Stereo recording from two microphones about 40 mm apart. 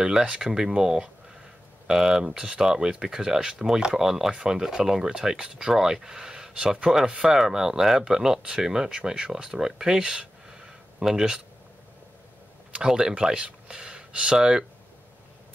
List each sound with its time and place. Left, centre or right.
0.0 s speech: centre
12.8 s speech: centre